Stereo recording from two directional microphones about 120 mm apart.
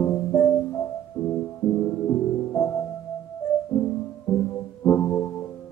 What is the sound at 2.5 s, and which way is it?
Music, 20° left (ahead or behind).